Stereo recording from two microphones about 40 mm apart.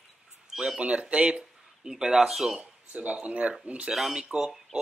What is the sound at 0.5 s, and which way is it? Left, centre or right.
Speech, centre.